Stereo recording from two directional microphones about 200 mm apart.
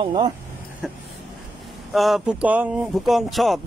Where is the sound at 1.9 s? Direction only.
Centre (ahead or behind).